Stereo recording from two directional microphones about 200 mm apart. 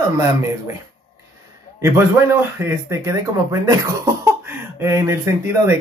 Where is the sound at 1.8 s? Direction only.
15° right (ahead or behind).